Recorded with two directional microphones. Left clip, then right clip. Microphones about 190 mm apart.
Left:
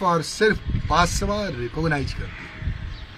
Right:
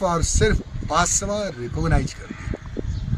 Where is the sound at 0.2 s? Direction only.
25° right (ahead or behind).